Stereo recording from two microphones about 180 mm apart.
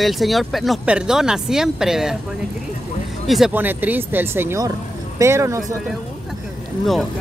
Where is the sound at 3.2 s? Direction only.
Centre (ahead or behind); by 5.7 s 15° right (ahead or behind).